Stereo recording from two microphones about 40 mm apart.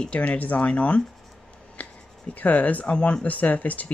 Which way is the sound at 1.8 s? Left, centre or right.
Left.